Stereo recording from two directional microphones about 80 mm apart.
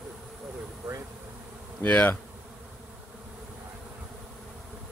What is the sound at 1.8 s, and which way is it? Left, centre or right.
Bee, left.